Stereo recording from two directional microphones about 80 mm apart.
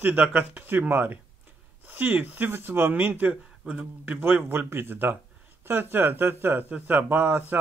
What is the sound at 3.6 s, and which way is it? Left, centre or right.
A man's voice, centre.